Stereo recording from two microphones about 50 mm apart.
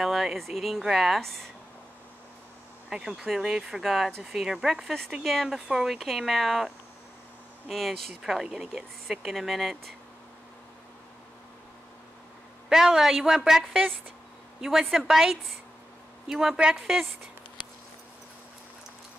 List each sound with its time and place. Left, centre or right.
0.0 s speech: centre
1.2 s speech: centre
2.9 s a woman's voice: centre
7.7 s speech: centre
12.6 s a woman's voice: centre